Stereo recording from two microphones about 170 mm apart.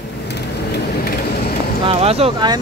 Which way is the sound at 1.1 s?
60° left (ahead or behind).